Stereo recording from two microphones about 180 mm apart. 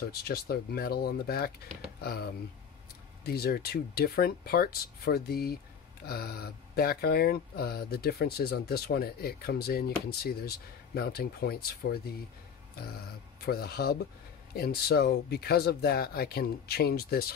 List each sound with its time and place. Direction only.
0.2 s speech: 60° left (ahead or behind)
3.3 s speech: 60° left (ahead or behind)